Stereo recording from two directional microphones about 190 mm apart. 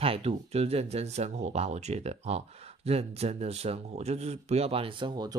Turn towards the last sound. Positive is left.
turn(degrees=-20)  # may be behind; listen again after turning